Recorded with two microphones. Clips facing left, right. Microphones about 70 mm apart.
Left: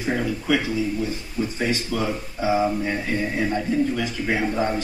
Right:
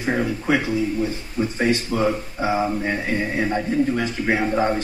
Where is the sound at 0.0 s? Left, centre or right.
Right.